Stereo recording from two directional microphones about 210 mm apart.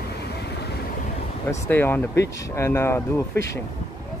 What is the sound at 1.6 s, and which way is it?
Speech, 10° left (ahead or behind).